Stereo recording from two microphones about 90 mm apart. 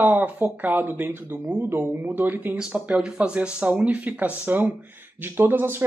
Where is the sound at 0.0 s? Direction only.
20° right (ahead or behind).